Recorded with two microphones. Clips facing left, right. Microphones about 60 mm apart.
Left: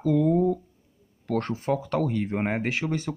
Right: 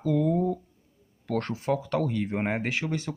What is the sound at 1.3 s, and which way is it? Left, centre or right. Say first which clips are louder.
Speech: left 1 dB; centre.